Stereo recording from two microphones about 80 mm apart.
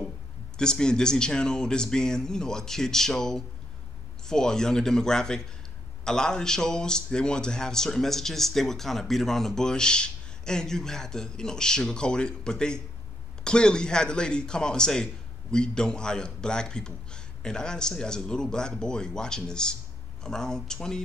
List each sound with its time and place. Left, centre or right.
0.6 s speech: centre